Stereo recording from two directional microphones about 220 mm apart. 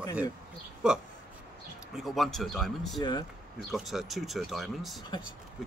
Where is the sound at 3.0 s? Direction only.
20° left (ahead or behind).